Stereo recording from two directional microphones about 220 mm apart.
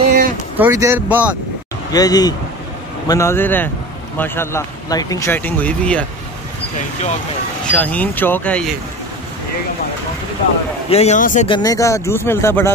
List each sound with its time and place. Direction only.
0.6 s speech: 10° right (ahead or behind)
1.9 s a man's voice: 15° left (ahead or behind)
7.6 s a man's voice: 5° left (ahead or behind)
10.9 s a man's voice: 30° left (ahead or behind)
11.4 s a man's voice: 20° left (ahead or behind)